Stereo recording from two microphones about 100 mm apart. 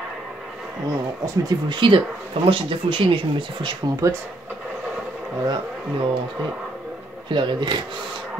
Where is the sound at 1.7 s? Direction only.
55° right (ahead or behind).